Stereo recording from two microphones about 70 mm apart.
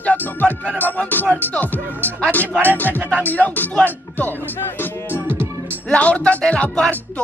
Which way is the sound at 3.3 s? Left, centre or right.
Left.